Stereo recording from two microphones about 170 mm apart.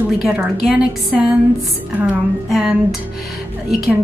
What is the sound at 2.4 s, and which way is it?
Speech, 5° right (ahead or behind).